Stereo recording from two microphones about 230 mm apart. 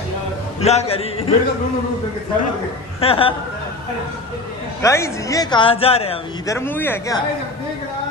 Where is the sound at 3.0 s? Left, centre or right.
Left.